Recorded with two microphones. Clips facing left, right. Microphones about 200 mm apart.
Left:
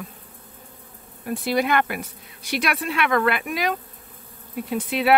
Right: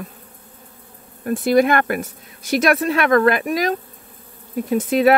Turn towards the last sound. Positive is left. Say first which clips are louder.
# right 7 dB
turn(degrees=-45)  # may be behind; listen again after turning